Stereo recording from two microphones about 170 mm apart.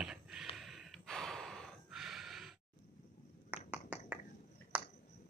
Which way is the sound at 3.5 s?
5° right (ahead or behind).